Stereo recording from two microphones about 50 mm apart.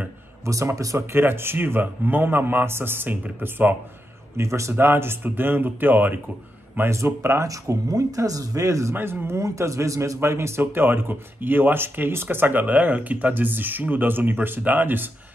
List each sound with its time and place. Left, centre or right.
0.5 s speech: right
1.1 s a man's voice: right
4.4 s speech: right
4.7 s a man's voice: right
7.1 s speech: right
8.2 s speech: right
8.9 s a man's voice: right
9.4 s a man's voice: right